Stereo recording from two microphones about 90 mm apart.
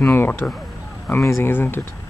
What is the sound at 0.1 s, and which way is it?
Speech, 25° left (ahead or behind).